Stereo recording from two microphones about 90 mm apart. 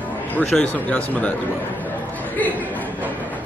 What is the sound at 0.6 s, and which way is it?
Speech, 15° left (ahead or behind).